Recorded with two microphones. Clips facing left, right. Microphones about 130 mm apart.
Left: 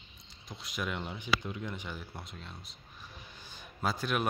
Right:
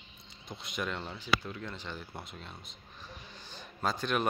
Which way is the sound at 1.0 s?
15° left (ahead or behind).